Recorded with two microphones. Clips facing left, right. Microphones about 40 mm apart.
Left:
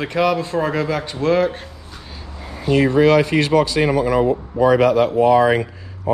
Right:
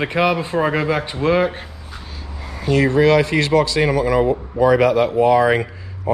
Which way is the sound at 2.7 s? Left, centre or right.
Right.